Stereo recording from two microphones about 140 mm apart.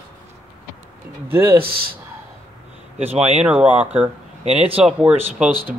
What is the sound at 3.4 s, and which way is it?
Speech, 10° right (ahead or behind).